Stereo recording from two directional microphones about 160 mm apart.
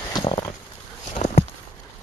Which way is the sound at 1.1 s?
50° left (ahead or behind).